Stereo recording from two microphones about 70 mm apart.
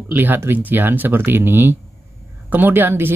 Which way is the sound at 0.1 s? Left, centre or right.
Right.